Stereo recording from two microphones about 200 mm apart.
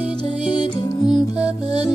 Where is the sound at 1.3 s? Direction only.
30° right (ahead or behind).